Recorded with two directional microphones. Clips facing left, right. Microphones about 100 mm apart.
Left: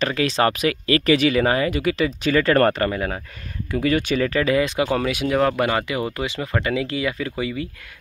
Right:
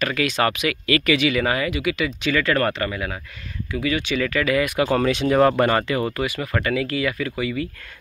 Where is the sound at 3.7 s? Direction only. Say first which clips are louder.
Left 3 dB; 45° left (ahead or behind).